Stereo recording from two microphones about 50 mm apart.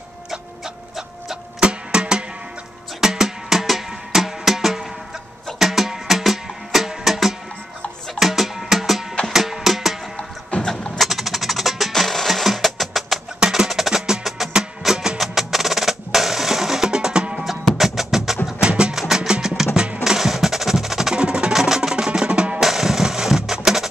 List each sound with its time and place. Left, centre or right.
1.6 s music: centre
10.5 s vehicle: left
11.0 s music: centre
17.7 s music: centre
18.6 s music: centre
20.0 s percussion: centre
22.6 s music: centre